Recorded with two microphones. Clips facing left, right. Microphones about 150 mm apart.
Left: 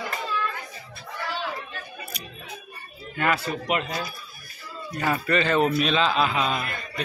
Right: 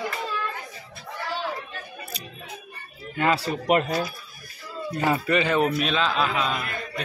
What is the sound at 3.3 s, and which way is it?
Speech, 40° right (ahead or behind).